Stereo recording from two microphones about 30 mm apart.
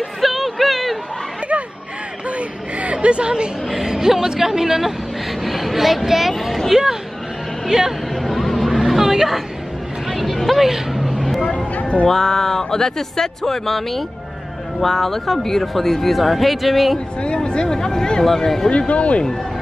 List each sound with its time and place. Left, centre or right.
0.2 s a sound: centre
2.2 s a sound: right
3.7 s a woman's voice: centre
8.1 s hubbub: centre
10.0 s a sound: centre
10.6 s vehicle: centre
11.4 s a sound: left
12.1 s speech: centre
17.4 s speech: left
17.6 s speech: centre
18.2 s speech: centre
18.7 s speech: left